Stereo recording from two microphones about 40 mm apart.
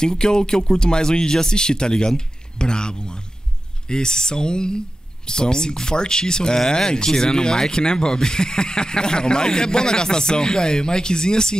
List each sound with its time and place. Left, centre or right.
0.0 s speech: centre